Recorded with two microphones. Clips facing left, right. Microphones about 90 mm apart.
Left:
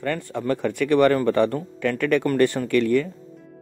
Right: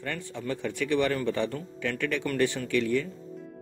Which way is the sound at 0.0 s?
55° left (ahead or behind).